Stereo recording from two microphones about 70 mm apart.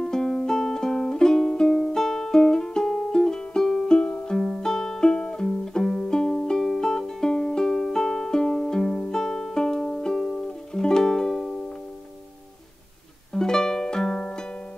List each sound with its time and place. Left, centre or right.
0.0 s music: centre
13.3 s music: centre